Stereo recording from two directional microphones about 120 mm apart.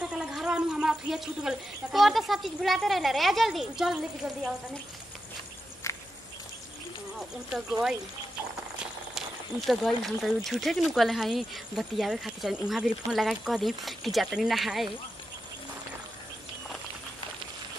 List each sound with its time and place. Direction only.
0.0 s speech: 5° right (ahead or behind)
5.9 s walk: 25° left (ahead or behind)
9.7 s speech: centre (ahead or behind)